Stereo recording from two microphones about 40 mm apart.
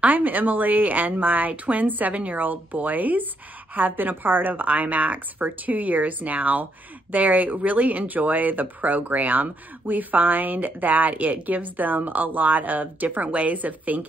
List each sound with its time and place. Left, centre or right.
0.0 s speech: right